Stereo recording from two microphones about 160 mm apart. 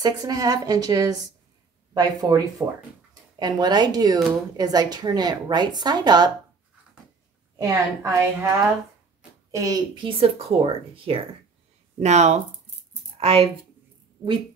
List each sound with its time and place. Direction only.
0.0 s speech: 20° right (ahead or behind)
7.5 s a woman's voice: 15° right (ahead or behind)
9.5 s speech: 20° right (ahead or behind); by 13.5 s 40° right (ahead or behind)